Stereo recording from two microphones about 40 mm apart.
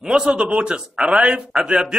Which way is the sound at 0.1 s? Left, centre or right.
Right.